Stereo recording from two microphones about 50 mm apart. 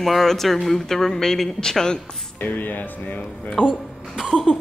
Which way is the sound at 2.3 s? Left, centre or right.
Left.